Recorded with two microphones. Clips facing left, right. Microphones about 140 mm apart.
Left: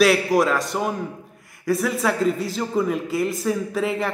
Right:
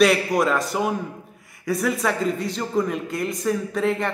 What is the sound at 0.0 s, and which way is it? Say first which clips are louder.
A man's voice: left 1 dB; centre (ahead or behind).